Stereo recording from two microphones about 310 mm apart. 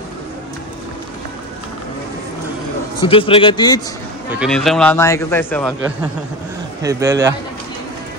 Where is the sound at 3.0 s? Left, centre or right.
Centre.